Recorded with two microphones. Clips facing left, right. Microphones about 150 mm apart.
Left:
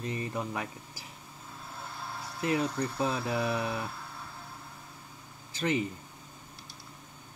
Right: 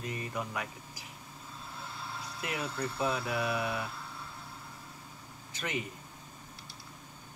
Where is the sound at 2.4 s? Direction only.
30° left (ahead or behind).